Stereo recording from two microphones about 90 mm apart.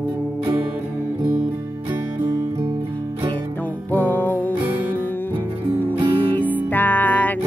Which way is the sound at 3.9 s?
20° left (ahead or behind).